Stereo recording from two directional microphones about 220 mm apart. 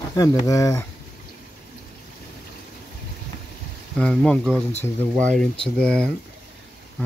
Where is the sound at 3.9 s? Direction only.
5° left (ahead or behind).